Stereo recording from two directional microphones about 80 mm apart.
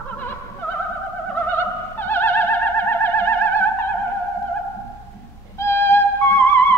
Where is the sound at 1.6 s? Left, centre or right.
Left.